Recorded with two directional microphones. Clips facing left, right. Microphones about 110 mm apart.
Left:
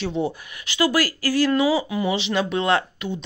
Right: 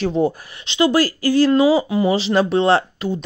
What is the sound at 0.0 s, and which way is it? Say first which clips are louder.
Speech: right 6 dB; 45° right (ahead or behind).